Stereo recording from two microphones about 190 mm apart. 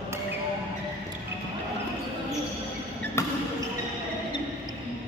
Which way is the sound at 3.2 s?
15° left (ahead or behind).